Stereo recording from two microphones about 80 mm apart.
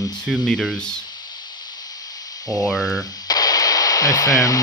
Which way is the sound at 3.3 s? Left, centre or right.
Left.